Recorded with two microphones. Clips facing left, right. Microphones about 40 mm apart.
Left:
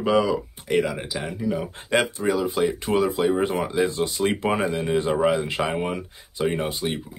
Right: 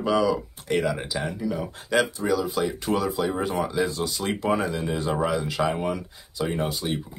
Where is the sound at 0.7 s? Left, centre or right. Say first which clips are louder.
Left 2 dB; centre; by 7.0 s left.